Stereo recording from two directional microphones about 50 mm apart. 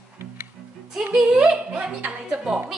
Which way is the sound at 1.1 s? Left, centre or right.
Centre.